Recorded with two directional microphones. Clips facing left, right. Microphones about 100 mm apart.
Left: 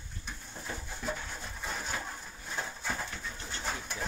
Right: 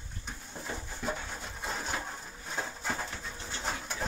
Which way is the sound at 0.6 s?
20° right (ahead or behind).